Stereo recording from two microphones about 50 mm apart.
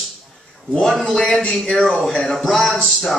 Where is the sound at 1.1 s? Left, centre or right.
Centre.